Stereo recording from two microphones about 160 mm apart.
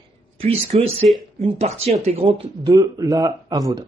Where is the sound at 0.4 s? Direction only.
40° right (ahead or behind).